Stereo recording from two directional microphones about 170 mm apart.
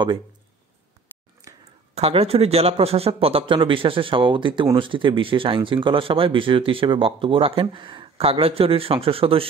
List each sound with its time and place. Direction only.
2.0 s speech: 35° right (ahead or behind)